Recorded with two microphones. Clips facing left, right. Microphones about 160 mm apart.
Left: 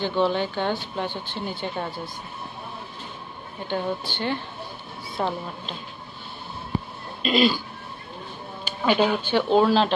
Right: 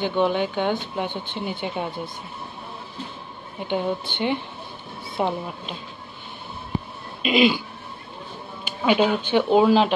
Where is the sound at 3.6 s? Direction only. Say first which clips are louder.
Right 2 dB; 15° right (ahead or behind).